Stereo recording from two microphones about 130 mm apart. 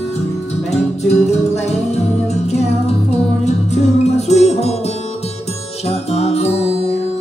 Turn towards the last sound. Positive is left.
turn(degrees=55)  # may be behind; listen again after turning